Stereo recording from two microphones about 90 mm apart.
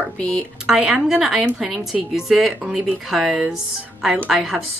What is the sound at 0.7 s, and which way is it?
A woman's voice, 10° right (ahead or behind).